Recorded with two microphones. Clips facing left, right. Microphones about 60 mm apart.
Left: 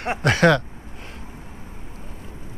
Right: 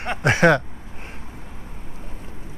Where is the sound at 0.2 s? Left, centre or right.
Right.